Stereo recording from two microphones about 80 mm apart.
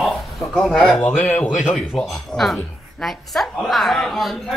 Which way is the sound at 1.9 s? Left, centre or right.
Centre.